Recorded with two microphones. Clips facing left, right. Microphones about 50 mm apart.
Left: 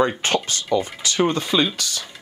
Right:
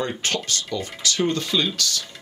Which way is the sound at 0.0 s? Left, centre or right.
Left.